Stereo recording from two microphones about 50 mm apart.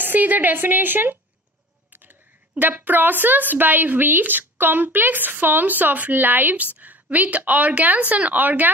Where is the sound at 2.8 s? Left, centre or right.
Right.